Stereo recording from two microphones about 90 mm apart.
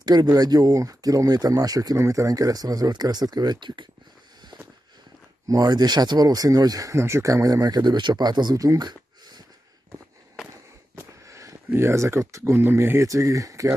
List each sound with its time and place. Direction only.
0.0 s speech: 50° right (ahead or behind)
5.5 s speech: 45° right (ahead or behind)
11.0 s speech: 35° right (ahead or behind)